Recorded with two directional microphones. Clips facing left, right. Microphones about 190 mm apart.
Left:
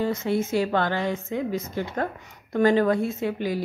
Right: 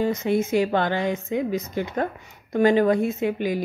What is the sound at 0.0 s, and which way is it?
A woman's voice, 15° right (ahead or behind).